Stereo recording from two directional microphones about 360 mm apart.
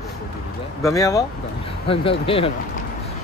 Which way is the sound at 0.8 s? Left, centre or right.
Centre.